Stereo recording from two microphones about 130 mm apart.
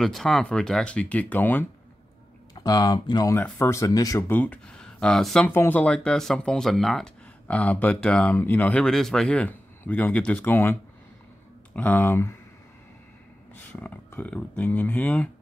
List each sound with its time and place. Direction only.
0.0 s speech: 5° left (ahead or behind)
2.5 s speech: 30° left (ahead or behind)
3.3 s speech: 20° left (ahead or behind); by 5.5 s 5° left (ahead or behind)
5.5 s speech: 15° left (ahead or behind)
13.6 s speech: 15° left (ahead or behind)